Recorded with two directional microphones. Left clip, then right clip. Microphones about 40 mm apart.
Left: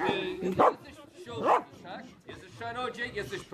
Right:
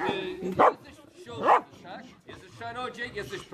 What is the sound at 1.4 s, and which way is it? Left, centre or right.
Speech, right.